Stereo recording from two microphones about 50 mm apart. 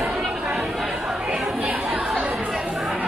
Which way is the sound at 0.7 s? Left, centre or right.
Centre.